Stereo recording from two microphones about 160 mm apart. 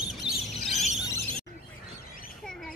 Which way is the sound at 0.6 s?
Centre (ahead or behind).